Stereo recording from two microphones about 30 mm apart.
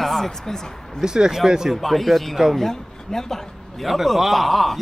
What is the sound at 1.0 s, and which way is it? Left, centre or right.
Speech, right.